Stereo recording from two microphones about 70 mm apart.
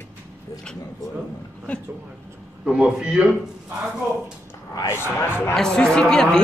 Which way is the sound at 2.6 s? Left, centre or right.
Centre.